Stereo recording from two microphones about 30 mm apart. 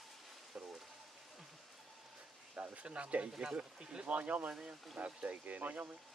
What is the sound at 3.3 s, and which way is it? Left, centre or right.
Speech, right.